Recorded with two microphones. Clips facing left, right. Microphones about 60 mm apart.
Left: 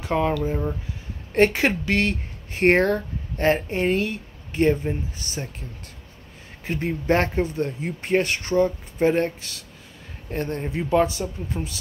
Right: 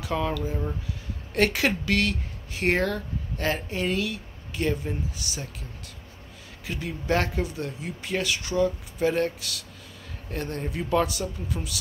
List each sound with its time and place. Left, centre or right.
0.0 s speech: left
1.3 s speech: left
2.6 s speech: left